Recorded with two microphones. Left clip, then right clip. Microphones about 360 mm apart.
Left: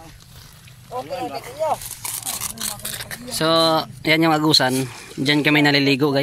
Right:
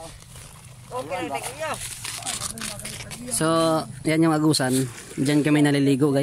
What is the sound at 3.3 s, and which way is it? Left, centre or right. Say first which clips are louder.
Speech: left 4 dB; centre.